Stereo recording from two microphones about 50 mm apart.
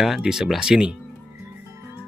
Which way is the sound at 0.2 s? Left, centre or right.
Centre.